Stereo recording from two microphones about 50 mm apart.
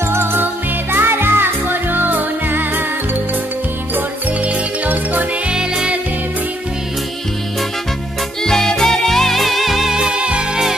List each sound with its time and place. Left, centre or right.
0.1 s music: right
5.5 s music: centre
8.5 s music: centre; by 10.6 s right